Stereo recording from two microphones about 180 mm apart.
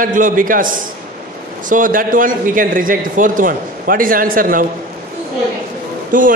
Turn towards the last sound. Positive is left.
turn(degrees=-45)  # may be behind; listen again after turning